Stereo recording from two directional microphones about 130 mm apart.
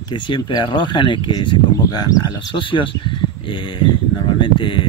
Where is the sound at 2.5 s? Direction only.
40° left (ahead or behind).